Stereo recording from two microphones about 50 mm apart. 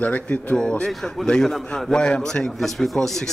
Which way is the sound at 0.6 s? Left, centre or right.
Centre.